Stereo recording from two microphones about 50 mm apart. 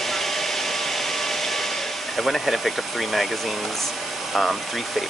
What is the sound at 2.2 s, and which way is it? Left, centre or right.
Speech, centre.